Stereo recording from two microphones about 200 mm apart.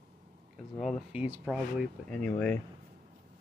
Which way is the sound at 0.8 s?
5° right (ahead or behind).